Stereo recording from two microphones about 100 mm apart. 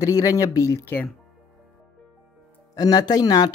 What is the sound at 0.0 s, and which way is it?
Speech, 35° left (ahead or behind).